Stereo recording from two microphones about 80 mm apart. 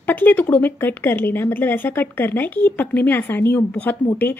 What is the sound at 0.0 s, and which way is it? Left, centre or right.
A woman's voice, left.